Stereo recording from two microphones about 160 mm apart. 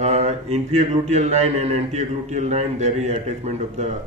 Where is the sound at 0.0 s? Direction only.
45° right (ahead or behind).